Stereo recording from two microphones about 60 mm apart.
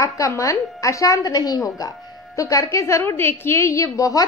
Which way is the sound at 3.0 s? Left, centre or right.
Left.